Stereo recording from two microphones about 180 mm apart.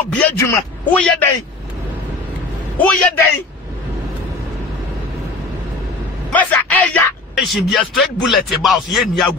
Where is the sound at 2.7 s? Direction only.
5° left (ahead or behind).